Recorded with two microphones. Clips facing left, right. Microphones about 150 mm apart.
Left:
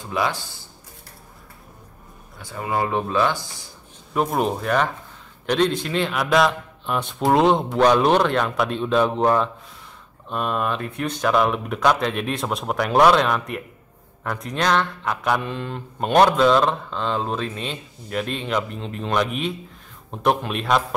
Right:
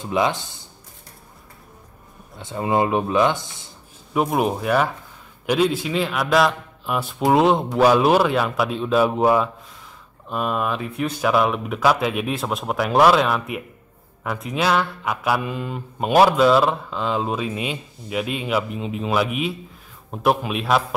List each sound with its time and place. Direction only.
0.0 s speech: 20° right (ahead or behind)
2.3 s speech: 20° right (ahead or behind)
4.1 s speech: 5° right (ahead or behind)
5.5 s mantra: 5° right (ahead or behind)